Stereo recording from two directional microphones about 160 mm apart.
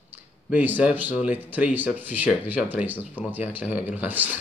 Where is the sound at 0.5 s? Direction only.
10° right (ahead or behind).